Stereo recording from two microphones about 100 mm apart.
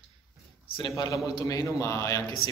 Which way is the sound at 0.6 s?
65° left (ahead or behind).